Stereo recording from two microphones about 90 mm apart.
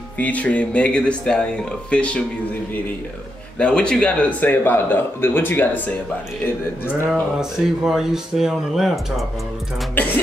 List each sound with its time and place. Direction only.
0.2 s speech: 15° left (ahead or behind)
3.5 s speech: 10° left (ahead or behind)
7.1 s speech: 5° right (ahead or behind)